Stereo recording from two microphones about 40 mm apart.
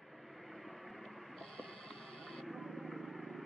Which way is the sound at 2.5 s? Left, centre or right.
Centre.